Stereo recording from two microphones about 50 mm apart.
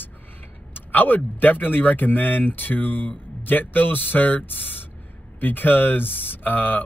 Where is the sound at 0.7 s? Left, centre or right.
Left.